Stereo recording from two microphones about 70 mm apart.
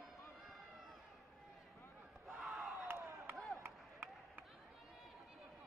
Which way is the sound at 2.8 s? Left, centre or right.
Right.